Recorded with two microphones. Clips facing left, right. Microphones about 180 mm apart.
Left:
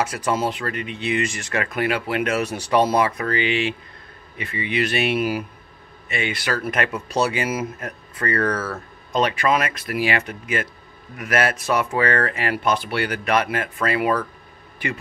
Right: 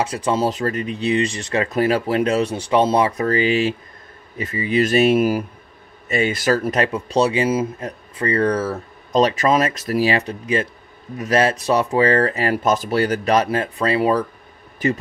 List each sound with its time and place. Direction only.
0.0 s speech: 30° right (ahead or behind)
3.2 s speech: 40° right (ahead or behind)
9.1 s speech: 40° right (ahead or behind)